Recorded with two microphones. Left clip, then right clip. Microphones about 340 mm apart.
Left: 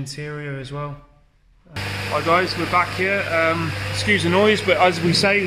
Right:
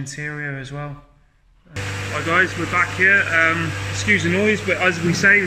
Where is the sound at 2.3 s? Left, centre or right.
Centre.